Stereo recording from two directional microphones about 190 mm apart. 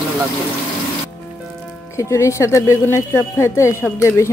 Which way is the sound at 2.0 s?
15° left (ahead or behind).